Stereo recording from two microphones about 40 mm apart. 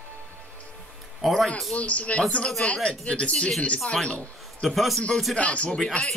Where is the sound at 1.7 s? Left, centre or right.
Left.